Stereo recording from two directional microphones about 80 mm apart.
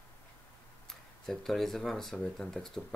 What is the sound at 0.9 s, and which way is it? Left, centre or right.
Speech, centre.